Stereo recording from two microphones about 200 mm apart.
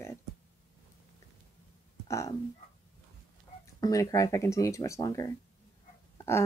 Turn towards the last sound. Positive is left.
turn(degrees=10)  # may be behind; listen again after turning